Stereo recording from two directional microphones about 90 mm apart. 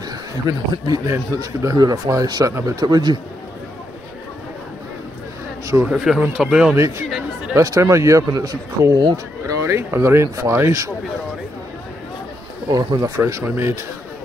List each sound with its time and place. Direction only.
0.5 s speech: 45° right (ahead or behind)
5.7 s speech: 35° right (ahead or behind)
6.0 s speech: 10° right (ahead or behind)
7.1 s a sound: 10° right (ahead or behind)
7.5 s speech: 40° right (ahead or behind)
8.9 s speech: 55° right (ahead or behind)
9.5 s speech: 30° right (ahead or behind)
12.6 s speech: 55° right (ahead or behind)
13.0 s speech: 35° right (ahead or behind)